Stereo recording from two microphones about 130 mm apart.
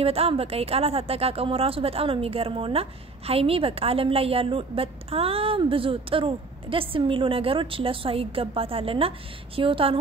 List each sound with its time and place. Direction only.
0.0 s a woman's voice: 50° right (ahead or behind)